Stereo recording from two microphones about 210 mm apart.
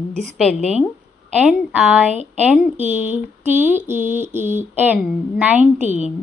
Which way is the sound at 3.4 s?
35° right (ahead or behind).